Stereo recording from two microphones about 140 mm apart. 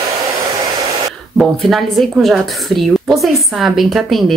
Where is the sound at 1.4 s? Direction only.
Centre (ahead or behind).